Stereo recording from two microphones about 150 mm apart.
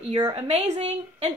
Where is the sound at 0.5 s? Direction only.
45° right (ahead or behind).